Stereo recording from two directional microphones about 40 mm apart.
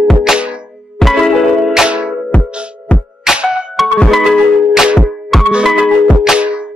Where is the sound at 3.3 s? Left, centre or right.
Right.